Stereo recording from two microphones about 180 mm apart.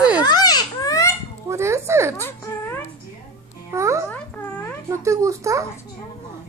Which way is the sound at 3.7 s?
15° right (ahead or behind).